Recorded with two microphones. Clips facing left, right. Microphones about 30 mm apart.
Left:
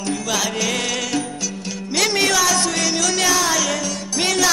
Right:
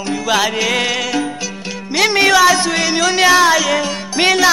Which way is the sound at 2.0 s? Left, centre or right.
Right.